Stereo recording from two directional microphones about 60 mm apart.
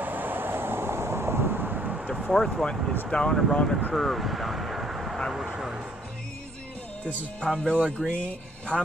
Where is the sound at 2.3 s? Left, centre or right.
Centre.